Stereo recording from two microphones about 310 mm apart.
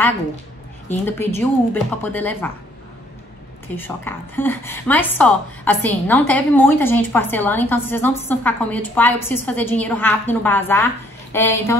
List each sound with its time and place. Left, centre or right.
0.8 s a woman's voice: centre
3.6 s a woman's voice: centre